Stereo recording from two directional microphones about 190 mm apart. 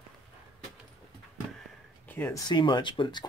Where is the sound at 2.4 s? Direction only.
25° left (ahead or behind).